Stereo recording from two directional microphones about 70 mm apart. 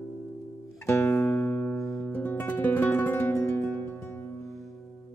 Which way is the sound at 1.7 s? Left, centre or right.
Left.